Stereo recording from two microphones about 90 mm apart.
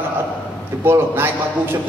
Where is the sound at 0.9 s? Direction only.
25° right (ahead or behind).